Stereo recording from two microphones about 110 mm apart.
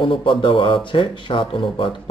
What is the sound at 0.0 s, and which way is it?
Speech, 50° left (ahead or behind).